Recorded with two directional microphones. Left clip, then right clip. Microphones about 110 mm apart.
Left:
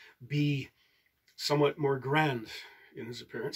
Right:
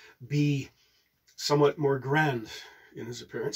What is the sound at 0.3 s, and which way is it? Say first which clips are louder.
Speech: right 3 dB; 35° right (ahead or behind).